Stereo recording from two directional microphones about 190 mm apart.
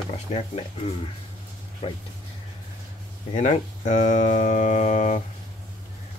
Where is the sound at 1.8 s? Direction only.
30° left (ahead or behind).